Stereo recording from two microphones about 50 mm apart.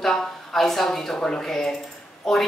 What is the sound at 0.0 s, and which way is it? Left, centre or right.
Speech, centre.